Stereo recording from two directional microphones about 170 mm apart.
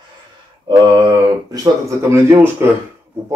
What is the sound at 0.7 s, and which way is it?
Speech, 25° right (ahead or behind).